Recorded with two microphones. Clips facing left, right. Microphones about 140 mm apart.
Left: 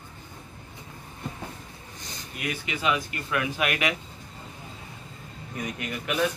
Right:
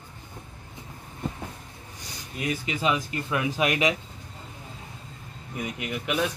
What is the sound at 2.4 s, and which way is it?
Speech, 35° right (ahead or behind).